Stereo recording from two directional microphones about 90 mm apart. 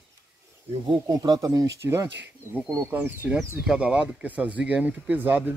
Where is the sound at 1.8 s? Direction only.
30° right (ahead or behind).